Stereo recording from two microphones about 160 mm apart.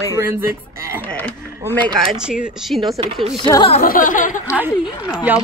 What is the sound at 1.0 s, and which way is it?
Speech, 10° left (ahead or behind).